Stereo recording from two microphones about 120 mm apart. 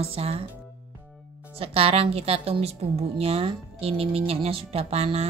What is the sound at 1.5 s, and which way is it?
A woman's voice, 55° right (ahead or behind).